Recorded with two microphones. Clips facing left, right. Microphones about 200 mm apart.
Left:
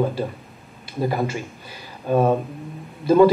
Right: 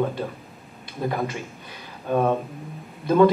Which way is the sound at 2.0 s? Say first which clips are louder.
Left 3 dB; 5° left (ahead or behind).